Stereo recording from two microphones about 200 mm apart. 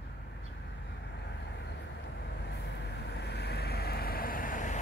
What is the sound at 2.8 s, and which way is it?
Vehicle, 55° left (ahead or behind).